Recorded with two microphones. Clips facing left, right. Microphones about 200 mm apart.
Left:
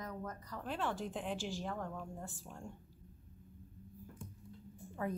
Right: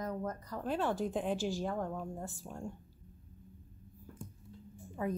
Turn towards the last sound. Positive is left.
turn(degrees=-15)  # may be behind; listen again after turning